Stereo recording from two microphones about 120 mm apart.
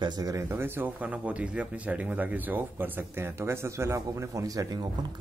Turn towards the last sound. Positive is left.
turn(degrees=-30)  # may be behind; listen again after turning